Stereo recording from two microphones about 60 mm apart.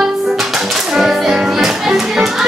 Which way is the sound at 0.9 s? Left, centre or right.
Centre.